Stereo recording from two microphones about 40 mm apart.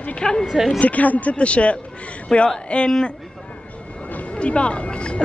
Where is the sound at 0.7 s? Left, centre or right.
Left.